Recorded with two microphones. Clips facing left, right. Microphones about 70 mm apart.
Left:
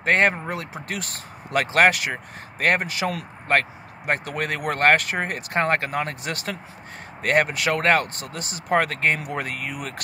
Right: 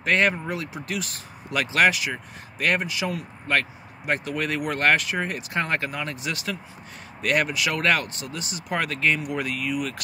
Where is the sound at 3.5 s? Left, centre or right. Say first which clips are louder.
Left 3 dB; left.